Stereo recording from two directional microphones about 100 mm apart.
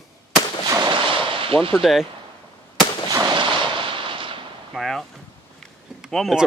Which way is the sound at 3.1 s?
40° right (ahead or behind).